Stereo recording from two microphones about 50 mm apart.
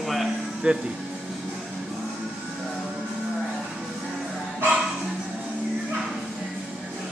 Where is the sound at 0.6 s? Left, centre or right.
Right.